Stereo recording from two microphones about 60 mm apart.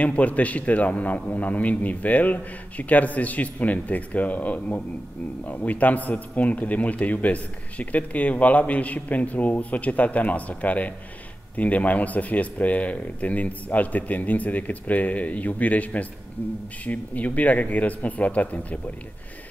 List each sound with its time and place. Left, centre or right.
0.0 s a man's voice: left